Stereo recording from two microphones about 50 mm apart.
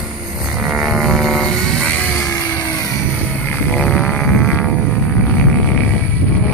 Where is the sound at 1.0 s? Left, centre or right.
Centre.